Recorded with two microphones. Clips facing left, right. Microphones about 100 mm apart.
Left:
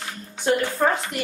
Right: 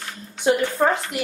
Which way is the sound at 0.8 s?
5° right (ahead or behind).